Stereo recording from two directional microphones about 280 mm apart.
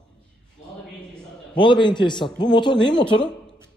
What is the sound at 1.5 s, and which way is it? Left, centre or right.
A man's voice, centre.